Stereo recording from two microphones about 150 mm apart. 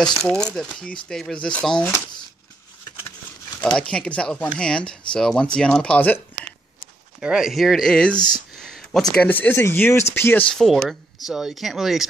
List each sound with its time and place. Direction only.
0.2 s speech: 5° left (ahead or behind)
3.7 s speech: 5° left (ahead or behind)
7.2 s speech: 5° right (ahead or behind); by 10.4 s 15° left (ahead or behind)
10.5 s speech: centre (ahead or behind)